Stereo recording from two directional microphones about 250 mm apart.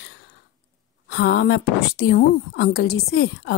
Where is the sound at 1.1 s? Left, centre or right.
Left.